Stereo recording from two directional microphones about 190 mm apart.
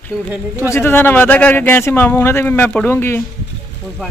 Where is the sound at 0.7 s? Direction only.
10° left (ahead or behind).